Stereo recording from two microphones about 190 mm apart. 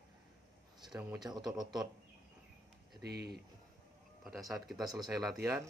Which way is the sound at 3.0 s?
60° right (ahead or behind).